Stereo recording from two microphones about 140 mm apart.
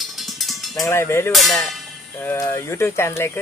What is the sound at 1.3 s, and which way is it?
Speech, centre (ahead or behind).